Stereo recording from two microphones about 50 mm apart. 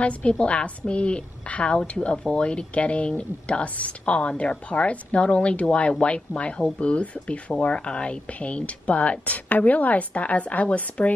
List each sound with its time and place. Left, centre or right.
0.0 s speech: left